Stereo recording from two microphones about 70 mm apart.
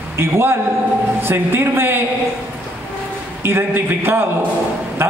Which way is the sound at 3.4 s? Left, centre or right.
Right.